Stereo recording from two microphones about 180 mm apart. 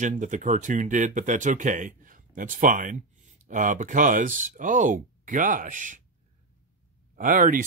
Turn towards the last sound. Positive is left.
turn(degrees=-45)  # may be behind; listen again after turning